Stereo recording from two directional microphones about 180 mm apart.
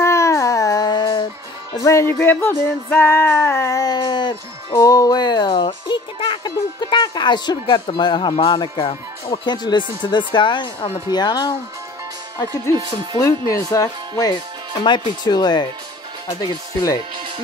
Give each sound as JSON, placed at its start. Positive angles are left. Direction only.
{"t": 0.0, "sound": "music", "side_deg": 15}
{"t": 13.2, "sound": "speech", "side_deg": 15}
{"t": 14.8, "sound": "music", "side_deg": 25}